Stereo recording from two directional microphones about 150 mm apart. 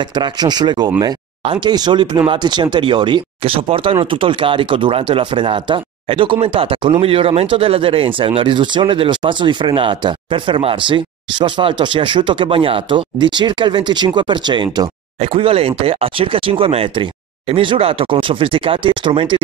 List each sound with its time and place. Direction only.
0.0 s speech: 30° right (ahead or behind)